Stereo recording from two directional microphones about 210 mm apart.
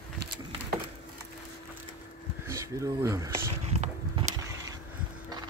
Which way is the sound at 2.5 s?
15° right (ahead or behind).